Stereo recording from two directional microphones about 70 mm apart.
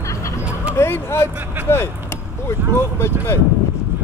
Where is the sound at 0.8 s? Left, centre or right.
Left.